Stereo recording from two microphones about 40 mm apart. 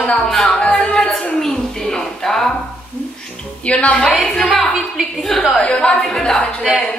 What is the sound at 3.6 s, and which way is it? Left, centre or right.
Speech, left.